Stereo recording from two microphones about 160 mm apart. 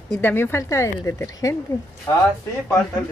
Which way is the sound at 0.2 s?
15° left (ahead or behind).